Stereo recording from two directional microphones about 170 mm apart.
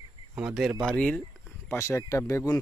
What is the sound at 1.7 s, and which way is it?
Speech, 15° left (ahead or behind).